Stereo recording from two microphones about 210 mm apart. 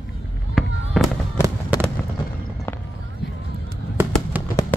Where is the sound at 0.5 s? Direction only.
Centre (ahead or behind).